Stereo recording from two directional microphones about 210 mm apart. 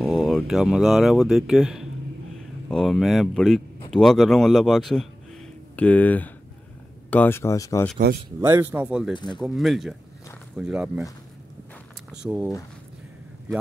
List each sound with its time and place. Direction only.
0.0 s speech: centre (ahead or behind)
8.4 s speech: 15° right (ahead or behind)
9.1 s speech: 20° left (ahead or behind)
9.4 s speech: centre (ahead or behind)
12.1 s speech: 5° right (ahead or behind)